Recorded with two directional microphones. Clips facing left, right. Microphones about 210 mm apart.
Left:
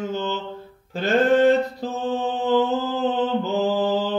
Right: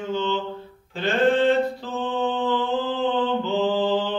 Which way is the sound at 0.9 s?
40° left (ahead or behind).